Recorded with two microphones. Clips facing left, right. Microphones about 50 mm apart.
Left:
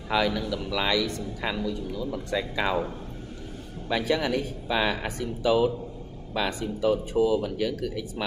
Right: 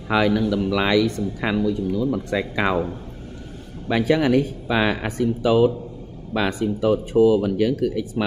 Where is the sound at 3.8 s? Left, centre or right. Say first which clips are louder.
Right 7 dB; right.